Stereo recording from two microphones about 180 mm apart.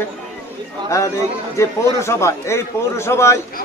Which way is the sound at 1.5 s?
15° left (ahead or behind).